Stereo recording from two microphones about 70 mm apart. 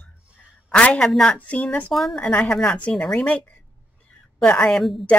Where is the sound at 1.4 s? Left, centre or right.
Left.